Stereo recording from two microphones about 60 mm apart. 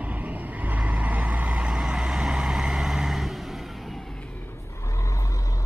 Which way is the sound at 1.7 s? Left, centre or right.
Centre.